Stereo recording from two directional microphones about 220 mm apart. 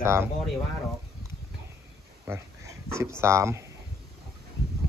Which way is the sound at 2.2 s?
10° right (ahead or behind).